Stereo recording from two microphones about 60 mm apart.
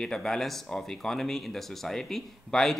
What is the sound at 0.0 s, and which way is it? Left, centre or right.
Speech, centre.